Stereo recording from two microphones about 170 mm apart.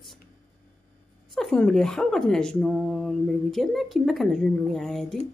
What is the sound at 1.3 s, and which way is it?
Speech, 5° left (ahead or behind).